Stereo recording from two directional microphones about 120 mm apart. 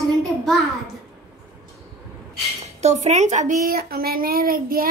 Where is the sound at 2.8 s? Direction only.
70° right (ahead or behind).